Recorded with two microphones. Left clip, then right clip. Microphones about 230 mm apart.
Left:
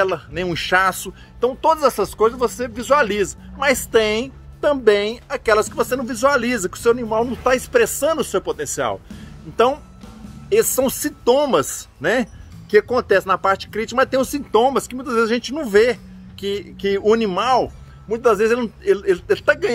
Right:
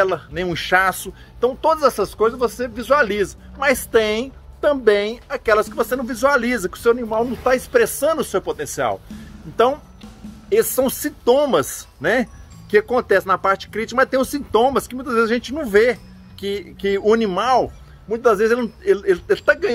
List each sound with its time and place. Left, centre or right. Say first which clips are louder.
0.0 s a woman's voice: right 1 dB; centre
10.5 s a woman's voice: even; centre